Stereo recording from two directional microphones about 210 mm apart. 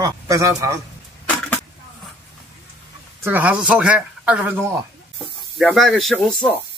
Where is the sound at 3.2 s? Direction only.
10° right (ahead or behind).